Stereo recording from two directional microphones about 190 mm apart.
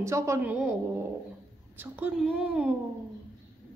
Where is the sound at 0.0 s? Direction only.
15° right (ahead or behind).